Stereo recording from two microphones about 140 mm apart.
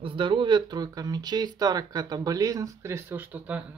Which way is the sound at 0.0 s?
35° right (ahead or behind).